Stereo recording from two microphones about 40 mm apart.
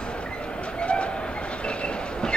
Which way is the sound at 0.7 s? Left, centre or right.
Left.